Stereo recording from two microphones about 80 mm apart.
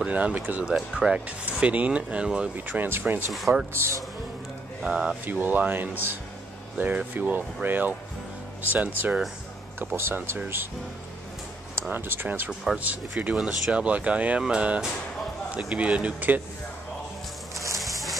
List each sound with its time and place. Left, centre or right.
0.0 s speech: centre
2.5 s speech: right
4.8 s speech: centre
5.2 s speech: right
9.9 s speech: right
11.9 s speech: right
13.4 s speech: centre